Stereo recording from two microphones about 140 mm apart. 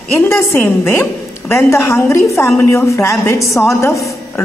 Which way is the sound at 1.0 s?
15° left (ahead or behind).